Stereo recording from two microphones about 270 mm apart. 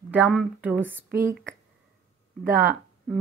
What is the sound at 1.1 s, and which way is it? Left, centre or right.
Speech, right.